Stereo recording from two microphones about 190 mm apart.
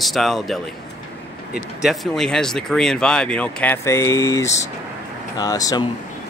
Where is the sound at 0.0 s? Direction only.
Centre (ahead or behind); by 5.9 s 20° left (ahead or behind).